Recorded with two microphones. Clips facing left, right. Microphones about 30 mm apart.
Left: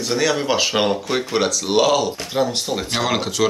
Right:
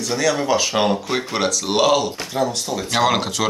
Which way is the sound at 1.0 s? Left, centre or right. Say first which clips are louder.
Left 1 dB; centre.